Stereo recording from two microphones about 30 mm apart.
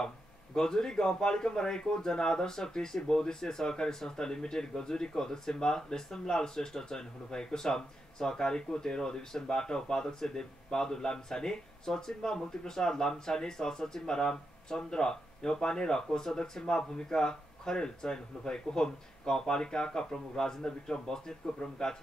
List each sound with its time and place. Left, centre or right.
0.6 s speech: centre